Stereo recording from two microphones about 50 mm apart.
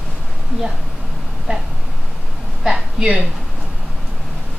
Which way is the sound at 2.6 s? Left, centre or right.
Centre.